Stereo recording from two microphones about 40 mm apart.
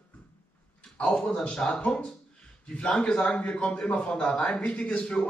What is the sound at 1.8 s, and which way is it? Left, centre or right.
A man's voice, left.